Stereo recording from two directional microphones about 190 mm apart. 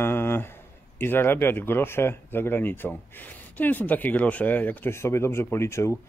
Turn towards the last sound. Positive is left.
turn(degrees=15)  # may be behind; listen again after turning